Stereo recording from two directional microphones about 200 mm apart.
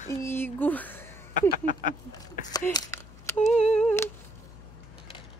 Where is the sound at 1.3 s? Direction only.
40° left (ahead or behind).